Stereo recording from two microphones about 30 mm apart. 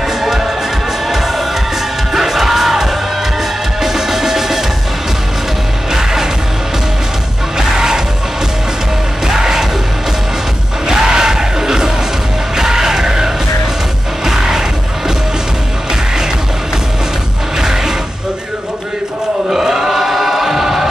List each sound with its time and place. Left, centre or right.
0.2 s music: centre
7.5 s music: centre
9.3 s music: centre
10.9 s music: right
17.6 s music: centre
19.5 s choir: centre